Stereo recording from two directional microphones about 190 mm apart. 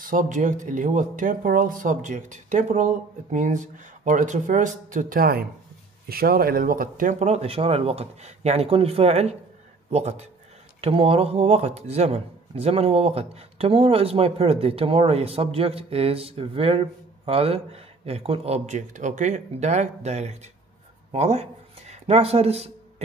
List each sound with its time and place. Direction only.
0.0 s speech: 45° right (ahead or behind)